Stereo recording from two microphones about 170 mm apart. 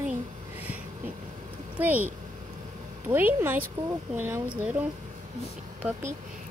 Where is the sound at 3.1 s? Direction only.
10° right (ahead or behind).